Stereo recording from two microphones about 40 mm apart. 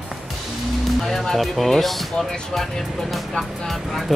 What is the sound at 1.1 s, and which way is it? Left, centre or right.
Speech, centre.